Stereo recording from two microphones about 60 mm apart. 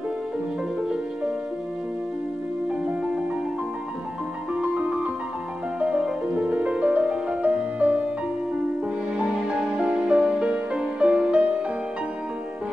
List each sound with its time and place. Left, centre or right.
4.6 s music: centre
9.8 s music: centre